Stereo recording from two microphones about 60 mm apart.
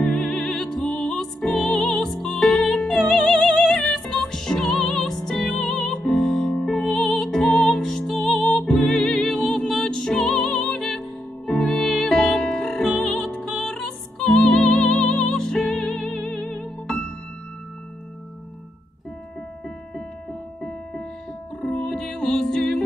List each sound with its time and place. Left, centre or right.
0.0 s music: centre
21.5 s music: centre